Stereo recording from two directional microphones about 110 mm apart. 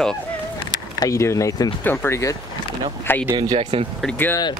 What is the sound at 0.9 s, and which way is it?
Speech, 30° left (ahead or behind).